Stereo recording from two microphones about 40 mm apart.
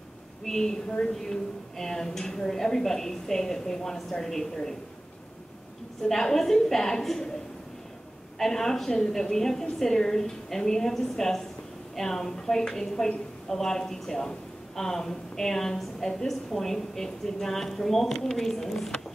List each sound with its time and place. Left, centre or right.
0.5 s a woman's voice: centre
0.8 s a woman's voice: left
1.1 s a woman's voice: centre
6.0 s a woman's voice: centre
8.4 s a woman's voice: centre